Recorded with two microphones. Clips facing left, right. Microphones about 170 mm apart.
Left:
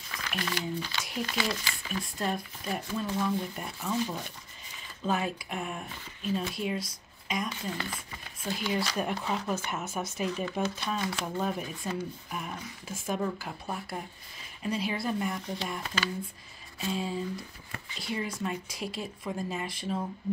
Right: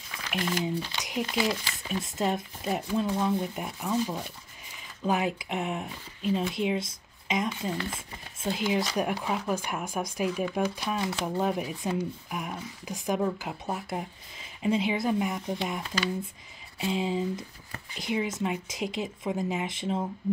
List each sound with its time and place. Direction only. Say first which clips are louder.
0.3 s a woman's voice: right 4 dB; 20° right (ahead or behind)